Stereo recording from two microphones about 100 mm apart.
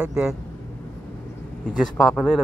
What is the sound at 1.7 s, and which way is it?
Speech, centre (ahead or behind).